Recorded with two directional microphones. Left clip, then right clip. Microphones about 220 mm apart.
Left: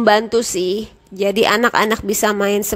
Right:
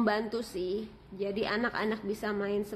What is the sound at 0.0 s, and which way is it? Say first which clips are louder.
A woman's voice: left 17 dB; 40° left (ahead or behind).